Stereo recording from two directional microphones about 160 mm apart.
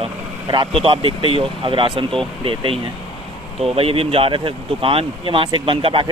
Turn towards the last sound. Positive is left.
turn(degrees=-30)  # may be behind; listen again after turning